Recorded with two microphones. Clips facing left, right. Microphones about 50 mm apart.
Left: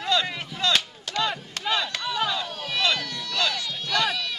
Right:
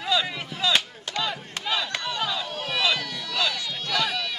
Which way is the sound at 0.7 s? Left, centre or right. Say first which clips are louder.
Even; right.